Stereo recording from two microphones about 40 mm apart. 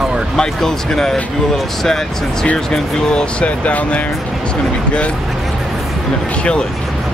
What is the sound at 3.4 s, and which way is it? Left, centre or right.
Speech, left.